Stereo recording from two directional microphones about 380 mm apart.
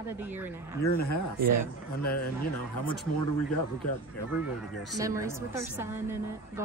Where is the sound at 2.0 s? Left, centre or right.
Left.